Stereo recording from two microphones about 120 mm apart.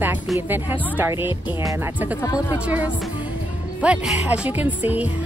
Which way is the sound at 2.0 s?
15° right (ahead or behind).